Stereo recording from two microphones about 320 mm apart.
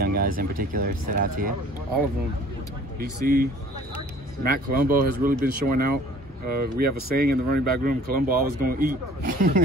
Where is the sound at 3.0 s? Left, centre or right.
Right.